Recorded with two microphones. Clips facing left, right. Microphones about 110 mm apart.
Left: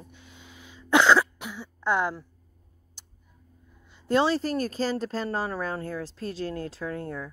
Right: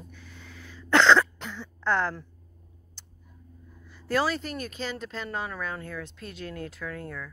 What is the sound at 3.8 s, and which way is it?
Speech, 20° left (ahead or behind).